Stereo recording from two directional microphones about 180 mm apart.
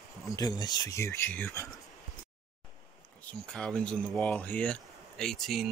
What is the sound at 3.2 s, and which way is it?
Speech, 5° left (ahead or behind).